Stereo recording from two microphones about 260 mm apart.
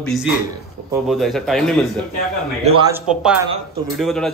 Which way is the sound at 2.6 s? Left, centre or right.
Right.